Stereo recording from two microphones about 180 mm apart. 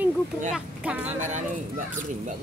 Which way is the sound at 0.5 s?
10° right (ahead or behind).